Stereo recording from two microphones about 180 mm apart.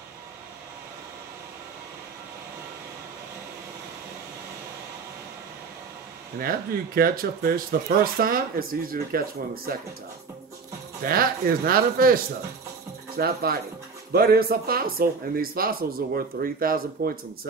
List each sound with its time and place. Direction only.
7.0 s speech: 55° right (ahead or behind)
11.0 s speech: 55° right (ahead or behind)
13.2 s speech: 60° right (ahead or behind)